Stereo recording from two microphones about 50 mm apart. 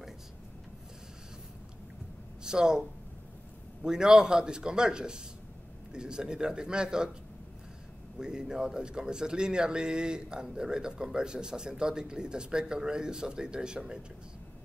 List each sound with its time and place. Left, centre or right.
2.4 s speech: centre
3.8 s a man's voice: centre
8.2 s a man's voice: centre